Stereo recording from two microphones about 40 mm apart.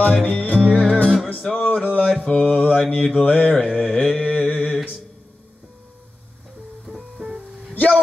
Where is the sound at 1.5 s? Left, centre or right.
Left.